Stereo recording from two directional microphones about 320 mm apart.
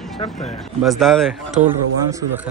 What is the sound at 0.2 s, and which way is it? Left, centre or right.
Speech, centre.